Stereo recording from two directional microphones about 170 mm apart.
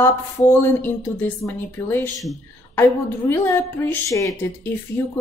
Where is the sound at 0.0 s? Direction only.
15° left (ahead or behind).